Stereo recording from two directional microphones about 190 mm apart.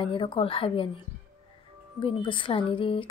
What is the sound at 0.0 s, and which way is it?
A woman's voice, 25° left (ahead or behind).